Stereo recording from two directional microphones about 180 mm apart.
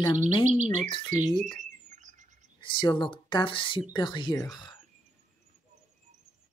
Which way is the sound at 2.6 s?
25° left (ahead or behind).